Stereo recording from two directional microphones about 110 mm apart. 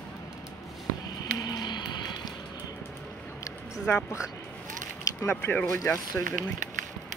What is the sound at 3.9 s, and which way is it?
Speech, 25° left (ahead or behind).